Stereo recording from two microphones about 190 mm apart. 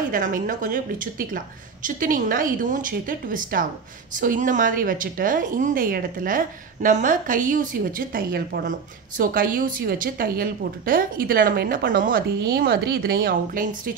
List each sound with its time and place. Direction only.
0.1 s a woman's voice: 45° right (ahead or behind)